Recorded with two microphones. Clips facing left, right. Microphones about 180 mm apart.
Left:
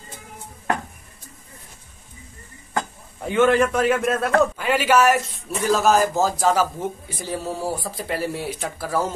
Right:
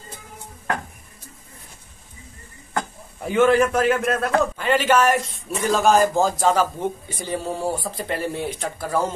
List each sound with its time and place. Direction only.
3.3 s speech: 5° right (ahead or behind)